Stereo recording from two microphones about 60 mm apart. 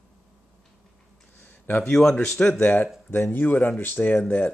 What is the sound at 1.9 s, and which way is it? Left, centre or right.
Speech, centre.